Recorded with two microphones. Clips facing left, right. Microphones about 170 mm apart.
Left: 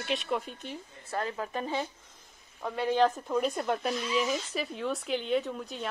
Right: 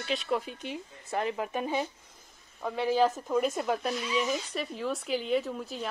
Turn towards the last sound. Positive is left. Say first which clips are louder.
# right 1 dB
turn(degrees=0)  # may be behind; listen again after turning